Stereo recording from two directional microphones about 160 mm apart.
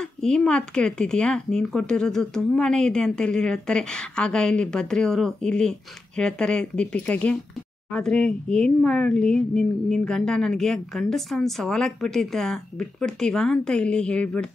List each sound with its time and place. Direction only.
0.0 s speech: 5° left (ahead or behind)